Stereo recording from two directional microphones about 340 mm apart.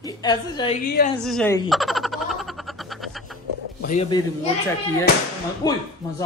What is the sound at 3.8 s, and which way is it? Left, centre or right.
Speech, centre.